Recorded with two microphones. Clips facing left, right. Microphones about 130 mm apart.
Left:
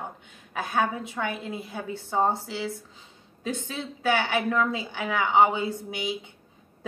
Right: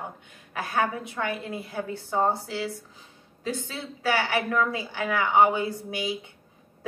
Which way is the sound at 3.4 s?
20° left (ahead or behind).